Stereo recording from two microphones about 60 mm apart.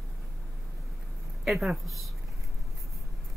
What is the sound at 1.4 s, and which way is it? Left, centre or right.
Speech, centre.